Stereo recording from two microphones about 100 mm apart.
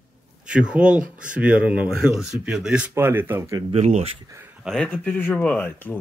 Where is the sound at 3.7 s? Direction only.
90° right.